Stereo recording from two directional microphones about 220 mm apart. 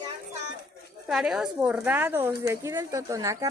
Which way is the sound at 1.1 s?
Centre (ahead or behind).